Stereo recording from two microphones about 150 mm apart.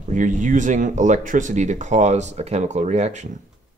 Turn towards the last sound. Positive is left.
turn(degrees=-50)  # may be behind; listen again after turning